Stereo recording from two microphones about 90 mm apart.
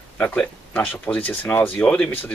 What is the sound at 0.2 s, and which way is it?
Speech, 20° left (ahead or behind).